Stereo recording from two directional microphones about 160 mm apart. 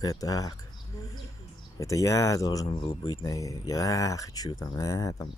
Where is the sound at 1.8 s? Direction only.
20° left (ahead or behind).